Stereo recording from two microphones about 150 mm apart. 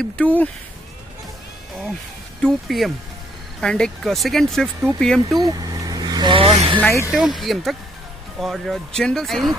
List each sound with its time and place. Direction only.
0.0 s speech: 10° left (ahead or behind)
2.4 s speech: centre (ahead or behind)
5.4 s vehicle: 25° right (ahead or behind)
6.5 s speech: 45° right (ahead or behind)
7.1 s speech: centre (ahead or behind)